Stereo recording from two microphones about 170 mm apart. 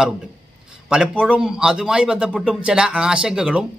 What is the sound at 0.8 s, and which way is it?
A man's voice, 5° right (ahead or behind).